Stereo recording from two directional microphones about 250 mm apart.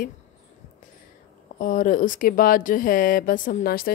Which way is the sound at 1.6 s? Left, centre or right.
Left.